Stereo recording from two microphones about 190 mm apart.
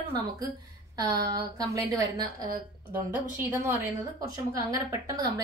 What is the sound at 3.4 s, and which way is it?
A woman's voice, 15° right (ahead or behind).